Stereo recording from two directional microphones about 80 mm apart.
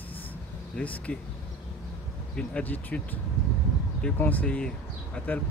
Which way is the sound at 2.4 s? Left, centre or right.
Centre.